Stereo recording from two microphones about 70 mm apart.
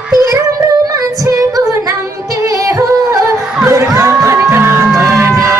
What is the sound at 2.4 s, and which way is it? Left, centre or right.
Music, right.